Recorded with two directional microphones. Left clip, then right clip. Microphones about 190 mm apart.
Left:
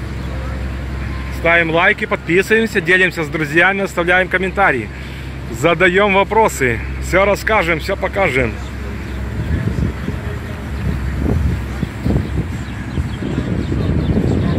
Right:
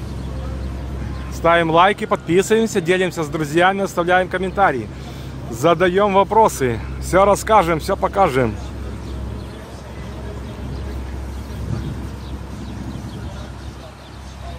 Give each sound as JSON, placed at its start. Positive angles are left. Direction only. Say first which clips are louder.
{"t": 1.4, "sound": "speech", "louder": "left 1 dB", "side_deg": -20}